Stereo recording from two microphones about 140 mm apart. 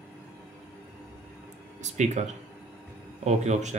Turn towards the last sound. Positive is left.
turn(degrees=-55)  # may be behind; listen again after turning